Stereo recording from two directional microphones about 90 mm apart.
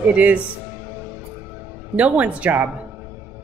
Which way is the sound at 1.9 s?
15° right (ahead or behind).